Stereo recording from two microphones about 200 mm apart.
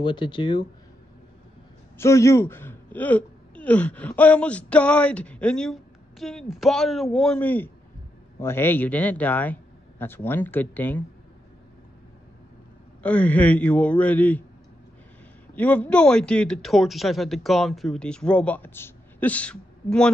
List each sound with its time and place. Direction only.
0.0 s speech: 25° left (ahead or behind)
2.0 s a man's voice: 15° left (ahead or behind)
13.0 s a man's voice: 5° left (ahead or behind)
15.5 s a man's voice: 5° left (ahead or behind)